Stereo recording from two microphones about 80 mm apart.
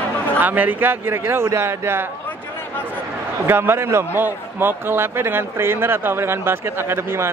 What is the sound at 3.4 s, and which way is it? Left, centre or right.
A man's voice, right.